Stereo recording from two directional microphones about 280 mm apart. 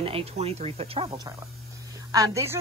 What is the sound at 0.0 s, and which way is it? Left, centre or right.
A woman's voice, right.